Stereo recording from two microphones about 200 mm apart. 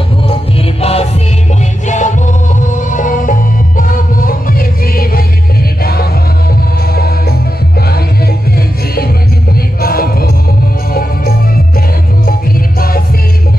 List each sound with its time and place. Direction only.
0.3 s music: 30° left (ahead or behind); by 7.3 s 50° left (ahead or behind)
8.5 s music: 50° left (ahead or behind)
9.8 s choir: 50° left (ahead or behind)
12.3 s music: 45° left (ahead or behind)